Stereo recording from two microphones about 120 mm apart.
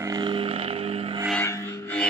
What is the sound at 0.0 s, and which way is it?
Vehicle, 35° right (ahead or behind).